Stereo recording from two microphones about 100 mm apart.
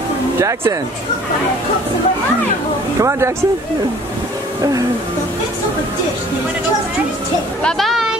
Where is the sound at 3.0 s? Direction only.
30° right (ahead or behind).